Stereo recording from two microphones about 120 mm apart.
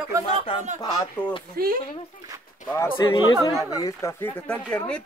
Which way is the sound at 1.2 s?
15° left (ahead or behind).